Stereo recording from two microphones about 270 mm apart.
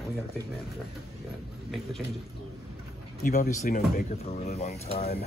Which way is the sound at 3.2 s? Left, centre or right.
Left.